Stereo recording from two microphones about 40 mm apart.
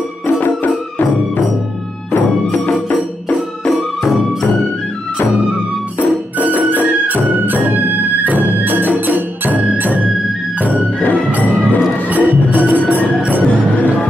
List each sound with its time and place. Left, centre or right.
3.6 s music: centre
7.2 s music: right
12.1 s music: right